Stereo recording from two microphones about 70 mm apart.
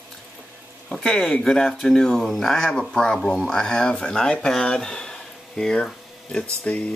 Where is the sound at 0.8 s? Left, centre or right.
Centre.